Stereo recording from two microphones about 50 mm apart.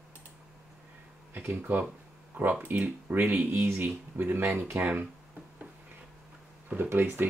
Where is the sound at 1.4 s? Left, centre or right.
Right.